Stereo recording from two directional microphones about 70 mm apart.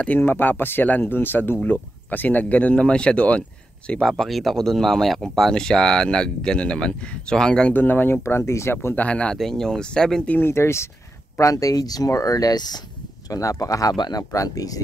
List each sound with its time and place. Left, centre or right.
0.2 s speech: left; by 7.7 s centre
7.7 s speech: left
8.2 s speech: left
8.9 s speech: centre
10.3 s speech: left
11.3 s speech: left
13.3 s speech: left
14.3 s speech: left